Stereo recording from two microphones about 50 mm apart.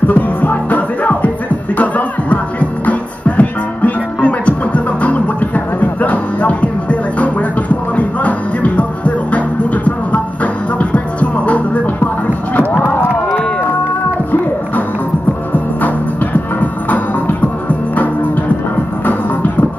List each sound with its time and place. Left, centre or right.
0.0 s music: left
16.5 s music: left